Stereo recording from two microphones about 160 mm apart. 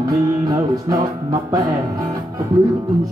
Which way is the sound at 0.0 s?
20° right (ahead or behind).